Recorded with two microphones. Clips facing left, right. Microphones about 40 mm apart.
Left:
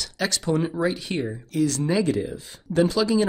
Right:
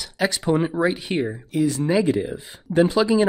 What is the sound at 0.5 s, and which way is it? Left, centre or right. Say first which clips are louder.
Speech: right 3 dB; right.